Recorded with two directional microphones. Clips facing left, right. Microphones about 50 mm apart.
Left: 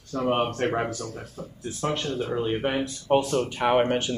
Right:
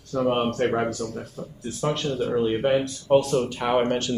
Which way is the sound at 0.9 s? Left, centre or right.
Centre.